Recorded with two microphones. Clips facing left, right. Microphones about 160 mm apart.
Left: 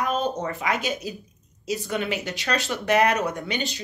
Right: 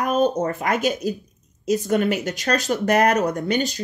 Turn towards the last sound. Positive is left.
turn(degrees=-40)  # may be behind; listen again after turning